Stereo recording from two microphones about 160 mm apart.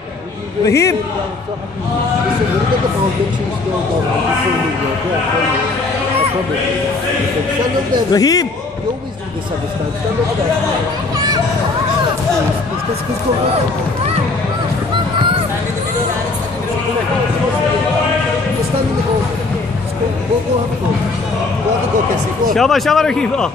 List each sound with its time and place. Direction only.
0.7 s speech: 20° left (ahead or behind)
8.1 s speech: 25° left (ahead or behind)
22.5 s speech: centre (ahead or behind)